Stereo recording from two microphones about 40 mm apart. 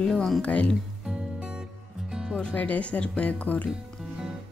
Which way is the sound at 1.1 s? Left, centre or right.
Right.